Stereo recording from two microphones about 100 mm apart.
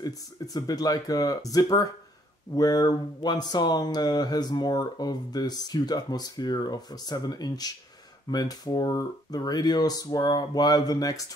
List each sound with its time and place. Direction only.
0.0 s speech: 40° left (ahead or behind)